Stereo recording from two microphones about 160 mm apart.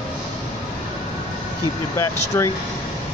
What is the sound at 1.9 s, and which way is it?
Speech, 15° left (ahead or behind).